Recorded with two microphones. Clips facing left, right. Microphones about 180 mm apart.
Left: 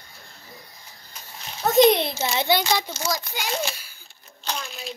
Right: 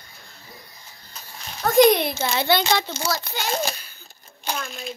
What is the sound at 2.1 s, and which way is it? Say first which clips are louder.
A child's voice: right 1 dB; 20° left (ahead or behind).